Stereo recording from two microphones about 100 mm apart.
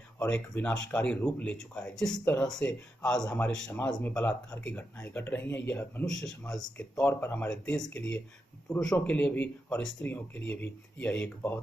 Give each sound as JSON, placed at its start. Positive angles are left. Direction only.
{"t": 0.2, "sound": "speech", "side_deg": 15}
{"t": 6.0, "sound": "speech", "side_deg": 5}
{"t": 7.0, "sound": "speech", "side_deg": 20}
{"t": 7.4, "sound": "speech", "side_deg": 10}